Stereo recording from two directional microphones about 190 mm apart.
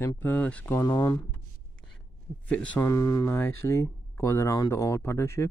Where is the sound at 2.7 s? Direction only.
15° left (ahead or behind).